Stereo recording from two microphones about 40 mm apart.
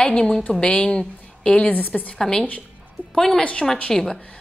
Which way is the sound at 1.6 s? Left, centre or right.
Left.